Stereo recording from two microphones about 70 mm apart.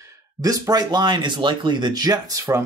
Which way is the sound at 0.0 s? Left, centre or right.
Right.